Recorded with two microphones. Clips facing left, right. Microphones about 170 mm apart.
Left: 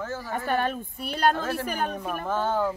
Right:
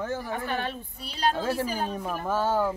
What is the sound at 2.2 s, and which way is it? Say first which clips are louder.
Speech: right 1 dB; 10° right (ahead or behind).